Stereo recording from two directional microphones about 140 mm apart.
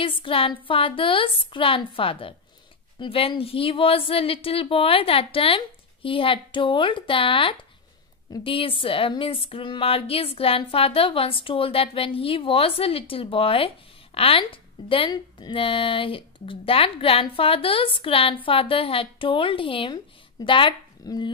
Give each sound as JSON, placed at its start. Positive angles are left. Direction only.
{"t": 0.0, "sound": "a woman's voice", "side_deg": 40}